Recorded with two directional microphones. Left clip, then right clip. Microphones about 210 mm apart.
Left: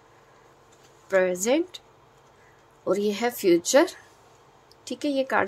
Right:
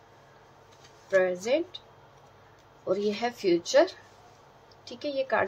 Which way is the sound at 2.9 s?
50° left (ahead or behind).